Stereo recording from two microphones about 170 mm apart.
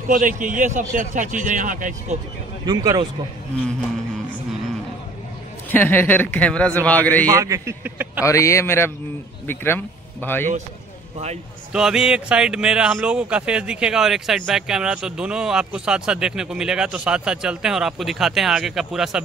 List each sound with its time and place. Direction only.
0.1 s a man's voice: 50° right (ahead or behind)
2.6 s speech: 20° right (ahead or behind)
5.7 s a man's voice: 10° left (ahead or behind)
7.2 s a man's voice: 20° right (ahead or behind)
8.3 s a man's voice: 15° left (ahead or behind)
11.7 s speech: 5° right (ahead or behind)